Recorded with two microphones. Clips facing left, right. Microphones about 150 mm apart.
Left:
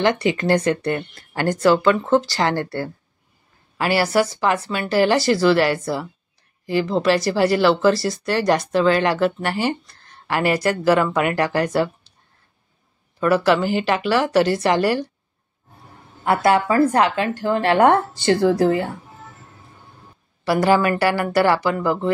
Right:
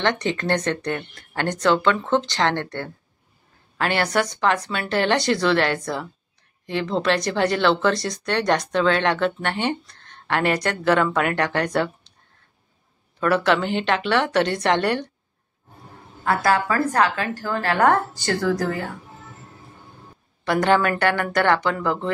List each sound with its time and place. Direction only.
0.0 s speech: 10° left (ahead or behind)
13.2 s speech: 5° left (ahead or behind)
16.3 s a woman's voice: 25° left (ahead or behind)
20.4 s speech: 5° left (ahead or behind)